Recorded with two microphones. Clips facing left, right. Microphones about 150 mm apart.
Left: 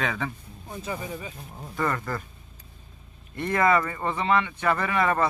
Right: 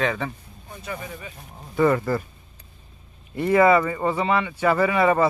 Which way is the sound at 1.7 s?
10° right (ahead or behind).